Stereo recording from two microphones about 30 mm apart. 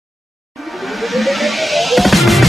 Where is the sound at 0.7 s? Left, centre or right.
Centre.